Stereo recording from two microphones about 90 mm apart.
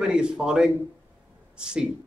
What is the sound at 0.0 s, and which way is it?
Speech, 10° right (ahead or behind).